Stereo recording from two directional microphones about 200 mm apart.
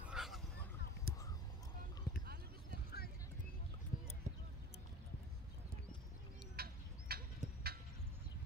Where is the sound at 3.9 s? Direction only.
45° left (ahead or behind).